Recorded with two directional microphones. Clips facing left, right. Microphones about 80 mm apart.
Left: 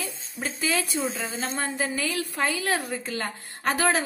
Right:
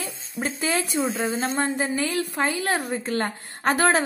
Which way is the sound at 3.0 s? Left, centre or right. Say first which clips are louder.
Right 5 dB; right.